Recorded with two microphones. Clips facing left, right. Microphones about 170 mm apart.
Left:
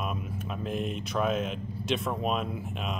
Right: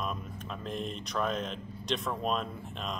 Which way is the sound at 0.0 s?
10° left (ahead or behind).